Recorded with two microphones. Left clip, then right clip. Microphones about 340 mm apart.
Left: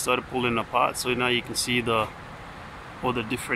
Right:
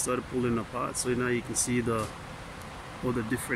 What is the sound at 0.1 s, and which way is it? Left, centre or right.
Speech, left.